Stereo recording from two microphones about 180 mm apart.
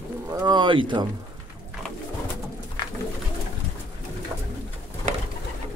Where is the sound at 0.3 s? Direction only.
20° right (ahead or behind).